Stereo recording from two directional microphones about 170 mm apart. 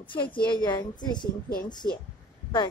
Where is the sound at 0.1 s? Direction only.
30° left (ahead or behind).